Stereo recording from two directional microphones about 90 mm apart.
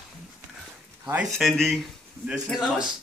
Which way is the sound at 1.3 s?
Centre (ahead or behind).